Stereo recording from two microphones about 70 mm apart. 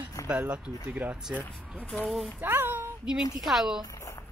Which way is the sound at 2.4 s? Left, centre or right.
Right.